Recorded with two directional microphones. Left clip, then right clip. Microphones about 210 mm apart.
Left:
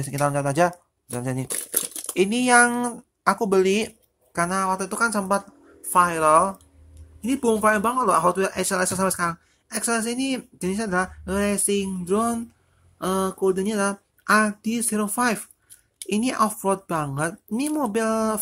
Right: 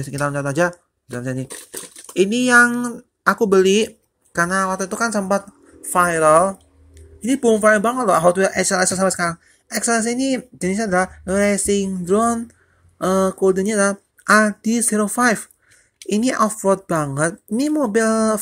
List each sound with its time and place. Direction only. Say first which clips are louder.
0.0 s speech: right 1 dB; centre (ahead or behind)